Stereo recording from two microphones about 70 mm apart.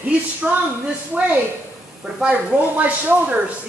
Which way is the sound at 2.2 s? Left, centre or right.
Right.